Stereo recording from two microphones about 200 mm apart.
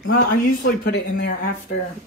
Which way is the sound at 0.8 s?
50° left (ahead or behind).